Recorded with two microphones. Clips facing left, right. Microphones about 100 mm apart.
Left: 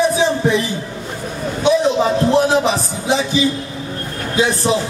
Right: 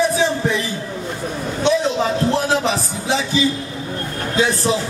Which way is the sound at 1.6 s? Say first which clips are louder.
Left 3 dB; 15° left (ahead or behind).